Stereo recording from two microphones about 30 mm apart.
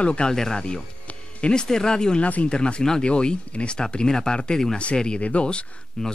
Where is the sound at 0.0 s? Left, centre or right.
Left.